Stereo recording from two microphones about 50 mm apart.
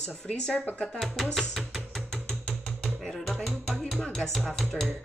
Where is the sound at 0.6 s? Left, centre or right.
Left.